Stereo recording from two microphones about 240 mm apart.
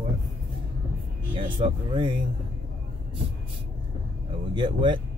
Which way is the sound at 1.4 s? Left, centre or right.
Right.